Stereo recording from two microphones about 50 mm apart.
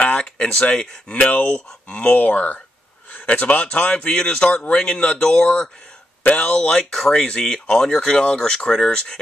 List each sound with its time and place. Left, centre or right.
0.2 s speech: centre
1.3 s speech: left
1.7 s speech: left
2.1 s speech: left
6.2 s speech: left
6.5 s speech: centre